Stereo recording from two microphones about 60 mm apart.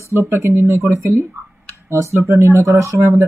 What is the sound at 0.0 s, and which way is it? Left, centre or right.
A woman's voice, right.